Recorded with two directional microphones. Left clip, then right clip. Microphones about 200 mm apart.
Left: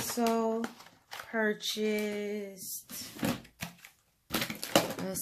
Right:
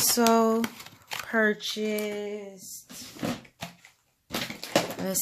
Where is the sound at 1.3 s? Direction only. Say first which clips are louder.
Right 7 dB; 20° right (ahead or behind).